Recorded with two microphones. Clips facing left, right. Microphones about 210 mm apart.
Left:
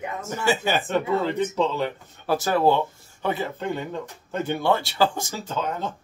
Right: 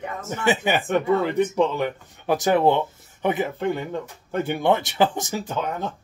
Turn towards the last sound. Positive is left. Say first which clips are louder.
# right 1 dB
turn(degrees=-15)  # may be behind; listen again after turning